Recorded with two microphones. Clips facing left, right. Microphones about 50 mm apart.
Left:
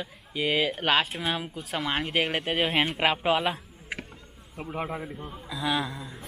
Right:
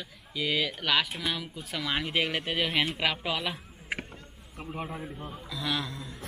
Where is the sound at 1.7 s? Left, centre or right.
Left.